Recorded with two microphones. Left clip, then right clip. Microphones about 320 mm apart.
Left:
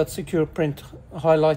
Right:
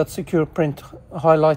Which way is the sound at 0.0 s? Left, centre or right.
Centre.